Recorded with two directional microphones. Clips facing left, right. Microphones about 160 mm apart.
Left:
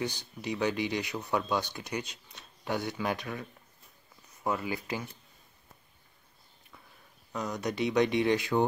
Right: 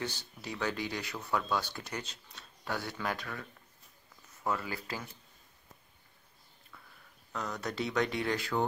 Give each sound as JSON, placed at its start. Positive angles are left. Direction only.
{"t": 0.0, "sound": "speech", "side_deg": 15}
{"t": 7.3, "sound": "speech", "side_deg": 15}